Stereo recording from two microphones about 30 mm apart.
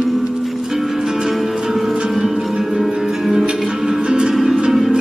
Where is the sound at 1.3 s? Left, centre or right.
Centre.